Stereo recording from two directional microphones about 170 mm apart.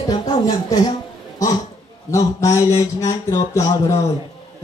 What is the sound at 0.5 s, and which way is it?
Speech, 25° left (ahead or behind).